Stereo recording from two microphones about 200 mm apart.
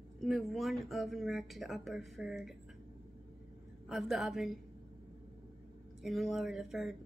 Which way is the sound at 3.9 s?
Centre (ahead or behind).